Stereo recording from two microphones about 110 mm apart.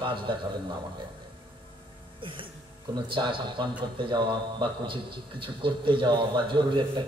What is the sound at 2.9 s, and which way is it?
A man's voice, 45° right (ahead or behind).